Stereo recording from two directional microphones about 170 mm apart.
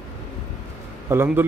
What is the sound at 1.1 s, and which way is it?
Speech, 15° right (ahead or behind).